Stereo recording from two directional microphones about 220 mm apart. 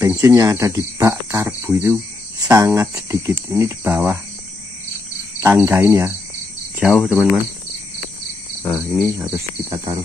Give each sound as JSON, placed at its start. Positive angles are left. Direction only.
{"t": 0.0, "sound": "speech", "side_deg": -10}
{"t": 5.4, "sound": "speech", "side_deg": -10}
{"t": 6.8, "sound": "speech", "side_deg": 0}
{"t": 8.6, "sound": "speech", "side_deg": 0}
{"t": 9.6, "sound": "speech", "side_deg": -15}